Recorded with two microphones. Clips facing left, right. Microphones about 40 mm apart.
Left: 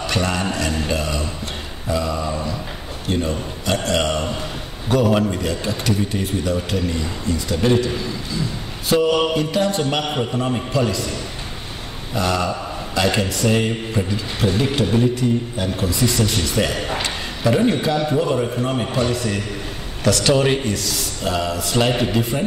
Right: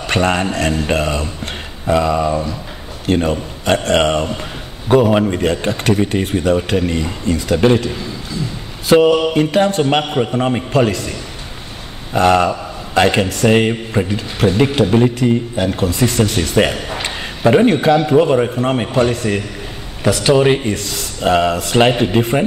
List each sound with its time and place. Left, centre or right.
0.0 s a man's voice: right
5.4 s a man's voice: right
8.8 s a sound: right
9.3 s a man's voice: right
20.0 s a man's voice: right
20.7 s a man's voice: right